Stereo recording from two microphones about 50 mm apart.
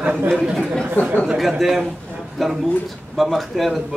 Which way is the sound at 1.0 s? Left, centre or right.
Left.